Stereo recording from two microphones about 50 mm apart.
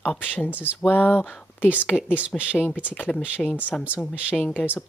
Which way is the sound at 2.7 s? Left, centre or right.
Left.